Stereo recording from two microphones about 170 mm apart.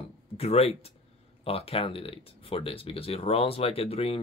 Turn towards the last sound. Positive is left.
turn(degrees=35)  # may be behind; listen again after turning